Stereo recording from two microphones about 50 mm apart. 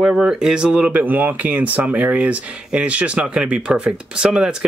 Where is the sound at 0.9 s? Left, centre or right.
Right.